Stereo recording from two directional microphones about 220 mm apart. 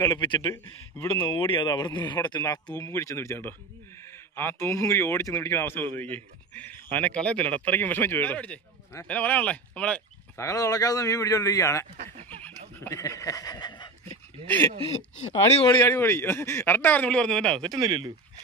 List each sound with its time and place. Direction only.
0.0 s speech: 20° left (ahead or behind)
0.9 s a man's voice: 10° left (ahead or behind)
1.4 s a man's voice: 20° left (ahead or behind)
12.3 s neigh: 5° left (ahead or behind)
12.8 s a sound: 15° left (ahead or behind)
14.9 s speech: 30° left (ahead or behind)
15.8 s a man's voice: 10° left (ahead or behind)
17.7 s speech: 15° right (ahead or behind)